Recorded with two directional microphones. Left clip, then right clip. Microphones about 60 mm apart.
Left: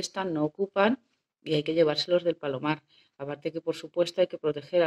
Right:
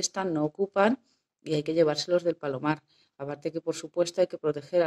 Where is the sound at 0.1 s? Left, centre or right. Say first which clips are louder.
Even; right.